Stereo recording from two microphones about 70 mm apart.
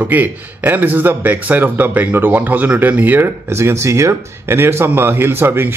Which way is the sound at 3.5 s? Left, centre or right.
Right.